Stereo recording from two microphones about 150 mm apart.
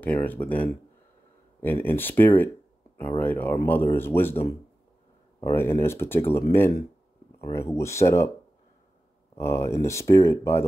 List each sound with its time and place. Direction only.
0.0 s speech: 10° left (ahead or behind)
5.4 s speech: 15° left (ahead or behind)
9.3 s speech: 20° left (ahead or behind)